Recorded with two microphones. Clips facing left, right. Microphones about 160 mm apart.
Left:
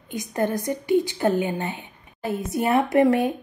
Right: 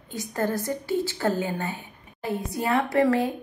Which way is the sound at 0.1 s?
20° left (ahead or behind).